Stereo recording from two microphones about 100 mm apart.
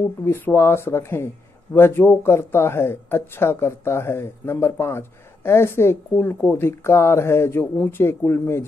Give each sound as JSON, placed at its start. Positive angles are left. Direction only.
{"t": 0.2, "sound": "speech", "side_deg": 25}